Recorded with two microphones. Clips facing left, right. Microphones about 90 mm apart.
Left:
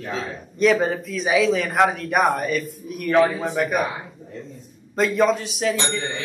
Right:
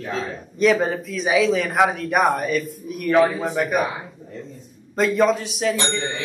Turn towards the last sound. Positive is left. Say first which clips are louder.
# right 1 dB
turn(degrees=0)  # may be behind; listen again after turning